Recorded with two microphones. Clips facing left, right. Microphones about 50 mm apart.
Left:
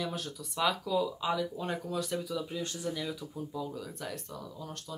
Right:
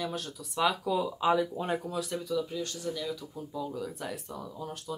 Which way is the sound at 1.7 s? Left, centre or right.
Centre.